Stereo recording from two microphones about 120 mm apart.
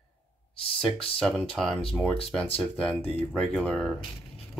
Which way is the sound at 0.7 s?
5° left (ahead or behind).